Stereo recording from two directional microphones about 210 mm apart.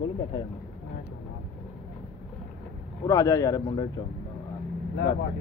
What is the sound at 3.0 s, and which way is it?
Speech, 15° left (ahead or behind).